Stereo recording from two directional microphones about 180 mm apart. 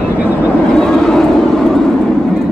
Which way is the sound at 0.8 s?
5° left (ahead or behind).